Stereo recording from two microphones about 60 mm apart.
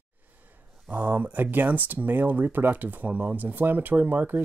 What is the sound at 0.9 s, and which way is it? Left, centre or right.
Speech, right.